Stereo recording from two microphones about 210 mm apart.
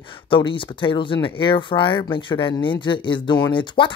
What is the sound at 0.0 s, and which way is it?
Speech, 25° left (ahead or behind).